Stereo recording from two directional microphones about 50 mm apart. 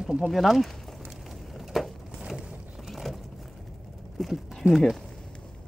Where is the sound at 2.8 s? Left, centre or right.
Centre.